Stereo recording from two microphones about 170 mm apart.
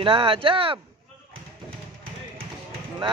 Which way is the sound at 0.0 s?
30° right (ahead or behind).